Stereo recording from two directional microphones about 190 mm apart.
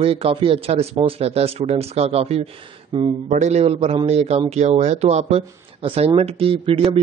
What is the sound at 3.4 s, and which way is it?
Speech, 35° right (ahead or behind).